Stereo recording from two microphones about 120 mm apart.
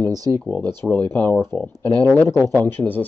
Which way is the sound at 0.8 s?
15° left (ahead or behind).